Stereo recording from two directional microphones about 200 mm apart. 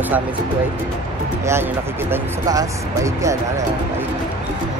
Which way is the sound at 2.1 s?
15° right (ahead or behind).